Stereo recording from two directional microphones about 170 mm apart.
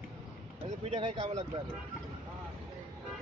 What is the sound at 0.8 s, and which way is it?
Speech, 35° right (ahead or behind).